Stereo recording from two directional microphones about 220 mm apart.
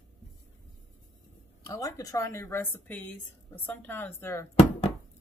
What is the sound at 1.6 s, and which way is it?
A woman's voice, 15° left (ahead or behind).